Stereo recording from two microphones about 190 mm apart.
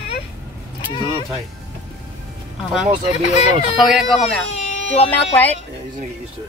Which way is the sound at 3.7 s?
Centre (ahead or behind).